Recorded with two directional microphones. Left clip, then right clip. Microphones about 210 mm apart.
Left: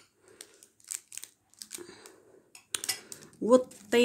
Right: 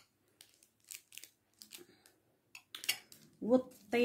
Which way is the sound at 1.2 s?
30° left (ahead or behind).